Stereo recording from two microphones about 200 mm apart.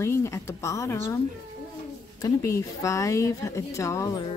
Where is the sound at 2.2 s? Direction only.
15° left (ahead or behind).